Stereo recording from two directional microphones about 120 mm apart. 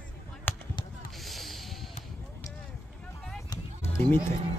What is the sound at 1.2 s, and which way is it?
Music, centre (ahead or behind).